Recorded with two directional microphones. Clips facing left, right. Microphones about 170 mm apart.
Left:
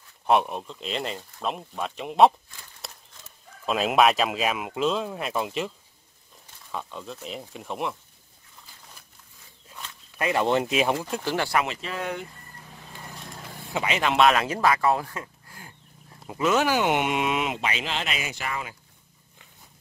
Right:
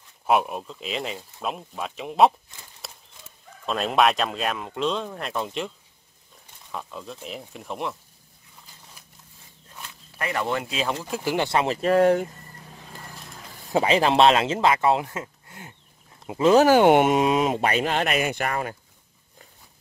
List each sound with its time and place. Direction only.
0.3 s speech: 5° right (ahead or behind)
2.8 s a sound: centre (ahead or behind)
3.6 s speech: 5° left (ahead or behind)
6.7 s speech: centre (ahead or behind)
10.1 s speech: 20° left (ahead or behind)
11.1 s speech: 5° right (ahead or behind)
11.3 s speech: 20° right (ahead or behind)
11.6 s speech: 45° right (ahead or behind)
13.7 s speech: 35° right (ahead or behind)
16.6 s speech: 50° right (ahead or behind)